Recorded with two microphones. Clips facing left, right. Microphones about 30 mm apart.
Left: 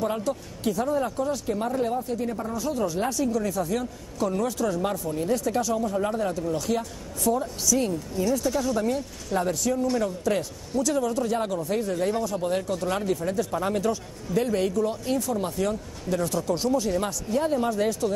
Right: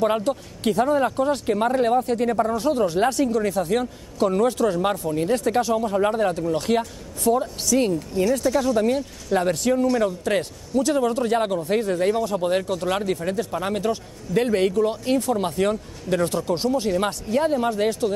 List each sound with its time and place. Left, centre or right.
0.0 s a man's voice: right
2.3 s a man's voice: right